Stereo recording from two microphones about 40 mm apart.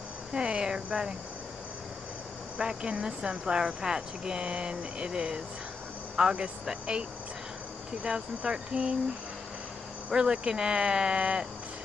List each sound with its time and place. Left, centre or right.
0.3 s speech: right
2.6 s speech: right
10.1 s speech: right